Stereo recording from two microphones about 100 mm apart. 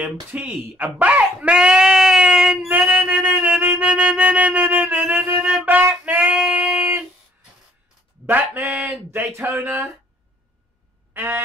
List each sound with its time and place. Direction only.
0.0 s speech: 15° right (ahead or behind)
3.8 s music: 10° right (ahead or behind)
5.7 s a sound: 20° right (ahead or behind)
8.3 s speech: 15° right (ahead or behind)
11.1 s goose: 20° right (ahead or behind)